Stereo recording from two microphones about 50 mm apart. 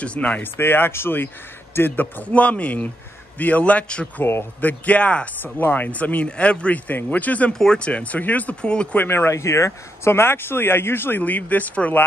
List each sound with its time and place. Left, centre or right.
0.0 s speech: left
0.4 s speech: left
2.2 s speech: left
5.4 s speech: left
6.9 s speech: left
7.5 s speech: centre
7.8 s speech: left
8.9 s speech: left
9.3 s speech: left
9.7 s speech: left